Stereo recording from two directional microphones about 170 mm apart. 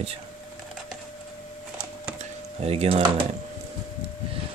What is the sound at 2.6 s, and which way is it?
Speech, 35° right (ahead or behind).